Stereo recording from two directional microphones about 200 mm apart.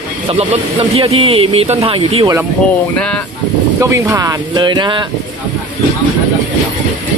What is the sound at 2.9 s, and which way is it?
Speech, 5° left (ahead or behind).